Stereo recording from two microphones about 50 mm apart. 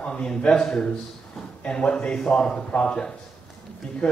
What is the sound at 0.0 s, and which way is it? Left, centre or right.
A man's voice, centre.